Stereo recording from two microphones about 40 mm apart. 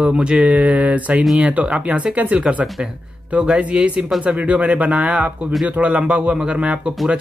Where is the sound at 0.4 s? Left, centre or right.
Right.